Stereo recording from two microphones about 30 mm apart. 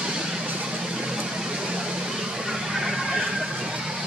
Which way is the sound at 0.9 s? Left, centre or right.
Right.